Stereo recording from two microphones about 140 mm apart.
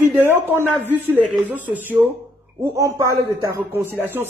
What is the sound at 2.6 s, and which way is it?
A woman's voice, 20° right (ahead or behind).